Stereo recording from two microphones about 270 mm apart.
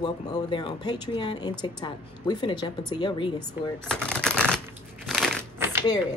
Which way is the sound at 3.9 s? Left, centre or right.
Centre.